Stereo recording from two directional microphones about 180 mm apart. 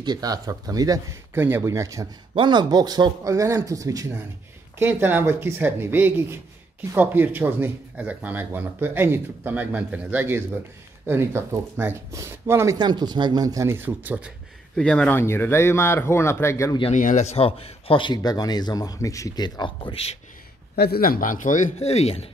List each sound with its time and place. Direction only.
0.0 s speech: 20° right (ahead or behind)
14.8 s speech: 5° left (ahead or behind)
16.9 s speech: 45° left (ahead or behind)
20.7 s speech: 60° left (ahead or behind); by 22.3 s 35° left (ahead or behind)